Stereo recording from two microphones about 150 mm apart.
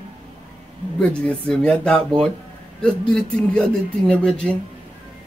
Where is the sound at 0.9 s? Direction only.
5° left (ahead or behind).